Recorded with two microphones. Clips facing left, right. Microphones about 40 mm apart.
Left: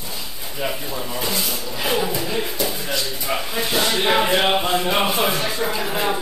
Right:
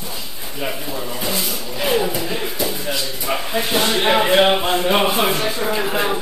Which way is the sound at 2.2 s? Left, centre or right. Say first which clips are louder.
Right 1 dB; right.